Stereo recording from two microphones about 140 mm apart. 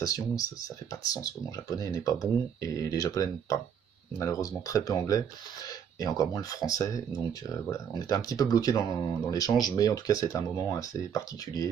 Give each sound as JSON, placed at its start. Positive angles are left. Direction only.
{"t": 0.0, "sound": "speech", "side_deg": 25}